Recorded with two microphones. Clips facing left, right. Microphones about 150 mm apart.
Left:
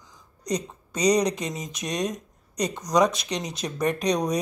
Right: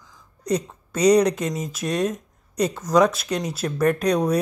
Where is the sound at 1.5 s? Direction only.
5° right (ahead or behind).